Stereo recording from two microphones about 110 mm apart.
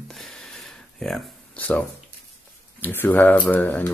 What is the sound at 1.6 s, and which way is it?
Speech, 15° left (ahead or behind).